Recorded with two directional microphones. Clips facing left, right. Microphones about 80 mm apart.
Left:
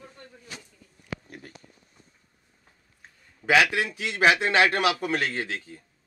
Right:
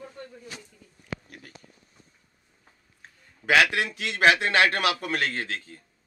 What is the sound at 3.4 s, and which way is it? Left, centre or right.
A man's voice, centre.